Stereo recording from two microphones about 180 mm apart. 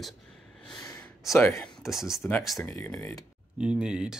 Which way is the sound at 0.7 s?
15° left (ahead or behind).